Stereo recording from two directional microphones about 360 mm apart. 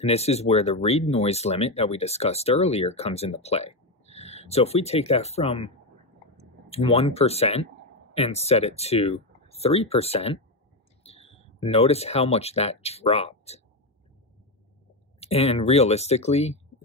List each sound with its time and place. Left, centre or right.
0.0 s speech: centre
6.7 s speech: centre
15.1 s speech: centre